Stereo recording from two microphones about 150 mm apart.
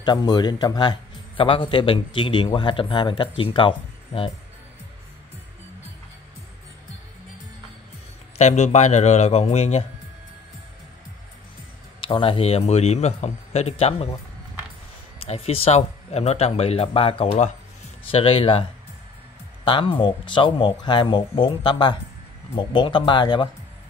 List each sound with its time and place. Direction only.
0.0 s a man's voice: 30° left (ahead or behind)
8.4 s speech: 50° left (ahead or behind)
12.0 s speech: 35° left (ahead or behind)
15.2 s a man's voice: 45° left (ahead or behind)